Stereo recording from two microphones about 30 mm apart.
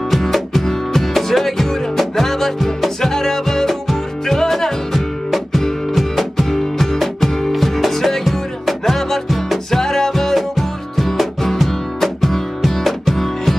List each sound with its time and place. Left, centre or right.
0.1 s music: centre
3.6 s music: centre
6.5 s music: centre
9.7 s music: centre
10.3 s music: centre